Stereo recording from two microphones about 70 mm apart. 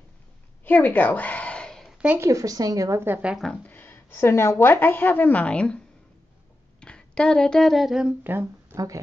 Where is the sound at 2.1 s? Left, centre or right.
Right.